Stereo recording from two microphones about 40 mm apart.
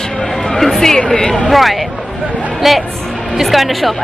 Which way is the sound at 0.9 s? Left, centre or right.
Centre.